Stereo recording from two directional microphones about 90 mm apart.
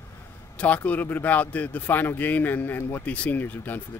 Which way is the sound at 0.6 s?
15° left (ahead or behind).